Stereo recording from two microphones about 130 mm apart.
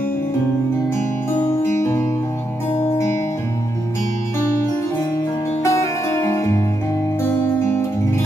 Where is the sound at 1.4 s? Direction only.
20° left (ahead or behind).